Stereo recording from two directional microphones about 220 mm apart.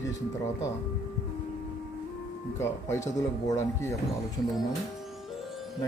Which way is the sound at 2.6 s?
15° left (ahead or behind).